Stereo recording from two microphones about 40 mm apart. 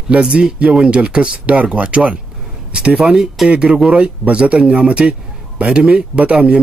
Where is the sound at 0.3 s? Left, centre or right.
Right.